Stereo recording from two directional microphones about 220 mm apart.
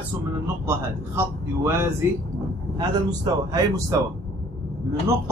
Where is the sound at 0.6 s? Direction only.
10° right (ahead or behind).